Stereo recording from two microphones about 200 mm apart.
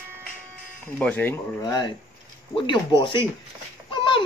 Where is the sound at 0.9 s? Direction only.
10° left (ahead or behind).